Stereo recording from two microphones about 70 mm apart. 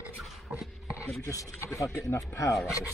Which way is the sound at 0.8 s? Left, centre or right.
Left.